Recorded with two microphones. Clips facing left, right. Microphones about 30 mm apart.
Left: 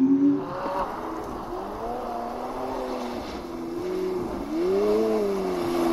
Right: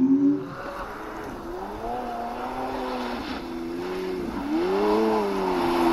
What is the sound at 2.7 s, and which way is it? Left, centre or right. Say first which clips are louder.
Vehicle: right 1 dB; right.